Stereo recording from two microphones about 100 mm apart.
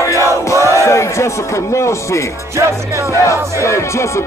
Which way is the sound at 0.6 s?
30° right (ahead or behind).